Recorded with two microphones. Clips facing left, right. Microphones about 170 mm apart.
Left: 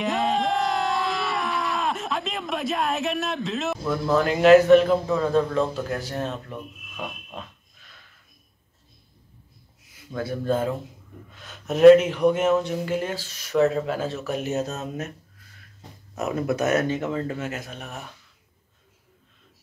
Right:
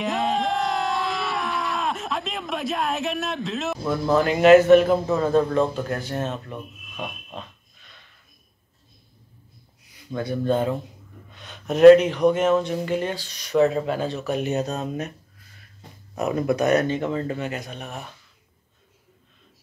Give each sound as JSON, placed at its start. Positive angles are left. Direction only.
{"t": 0.0, "sound": "a sound", "side_deg": 0}
{"t": 3.9, "sound": "speech", "side_deg": -5}
{"t": 10.1, "sound": "speech", "side_deg": 0}
{"t": 16.2, "sound": "speech", "side_deg": 0}